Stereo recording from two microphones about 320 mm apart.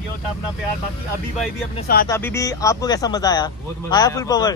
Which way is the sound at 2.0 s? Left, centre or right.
Centre.